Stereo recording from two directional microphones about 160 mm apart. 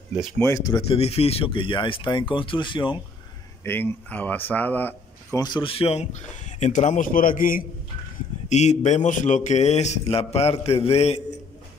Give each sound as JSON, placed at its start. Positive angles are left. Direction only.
{"t": 0.4, "sound": "speech", "side_deg": 20}
{"t": 0.8, "sound": "speech", "side_deg": 40}
{"t": 3.6, "sound": "speech", "side_deg": 10}
{"t": 5.3, "sound": "speech", "side_deg": 25}
{"t": 8.5, "sound": "speech", "side_deg": 45}